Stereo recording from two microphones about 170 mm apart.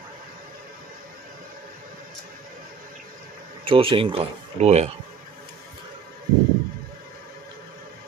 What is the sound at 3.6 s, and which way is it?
Speech, 30° right (ahead or behind).